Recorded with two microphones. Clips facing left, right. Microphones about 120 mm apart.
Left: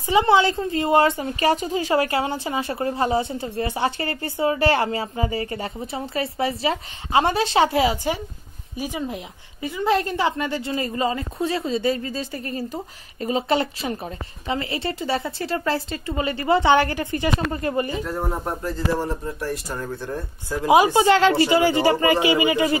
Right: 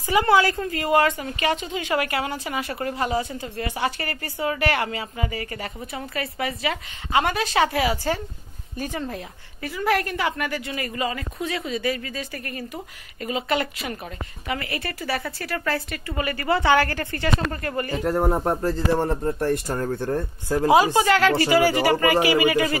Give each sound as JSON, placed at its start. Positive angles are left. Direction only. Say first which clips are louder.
{"t": 0.0, "sound": "a woman's voice", "louder": "left 2 dB", "side_deg": 25}
{"t": 18.0, "sound": "speech", "louder": "right 5 dB", "side_deg": -45}
{"t": 18.9, "sound": "speech", "louder": "right 3 dB", "side_deg": -55}
{"t": 20.6, "sound": "a woman's voice", "louder": "left 2 dB", "side_deg": 20}